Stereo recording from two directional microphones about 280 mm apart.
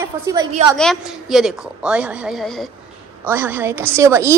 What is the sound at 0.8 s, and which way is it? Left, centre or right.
A woman's voice, centre.